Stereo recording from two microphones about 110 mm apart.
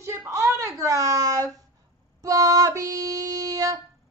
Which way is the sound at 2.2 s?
30° right (ahead or behind).